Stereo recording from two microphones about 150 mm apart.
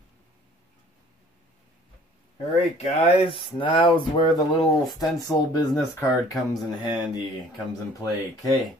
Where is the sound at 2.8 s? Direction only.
40° left (ahead or behind); by 6.3 s 20° left (ahead or behind).